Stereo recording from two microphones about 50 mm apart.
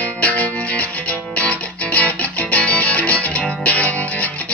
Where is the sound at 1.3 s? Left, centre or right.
Left.